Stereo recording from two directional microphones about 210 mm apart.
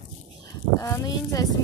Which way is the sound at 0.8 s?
15° left (ahead or behind).